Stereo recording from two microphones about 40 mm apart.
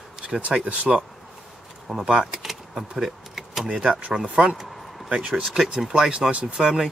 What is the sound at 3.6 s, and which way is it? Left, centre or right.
Speech, right.